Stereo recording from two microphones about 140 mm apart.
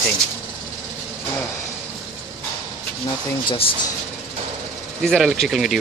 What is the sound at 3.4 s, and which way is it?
Speech, 40° left (ahead or behind).